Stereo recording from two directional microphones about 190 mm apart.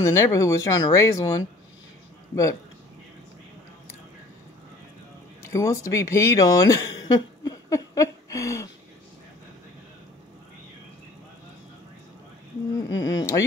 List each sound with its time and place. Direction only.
0.0 s speech: 15° left (ahead or behind)
5.5 s speech: 15° left (ahead or behind)
12.7 s speech: 20° left (ahead or behind)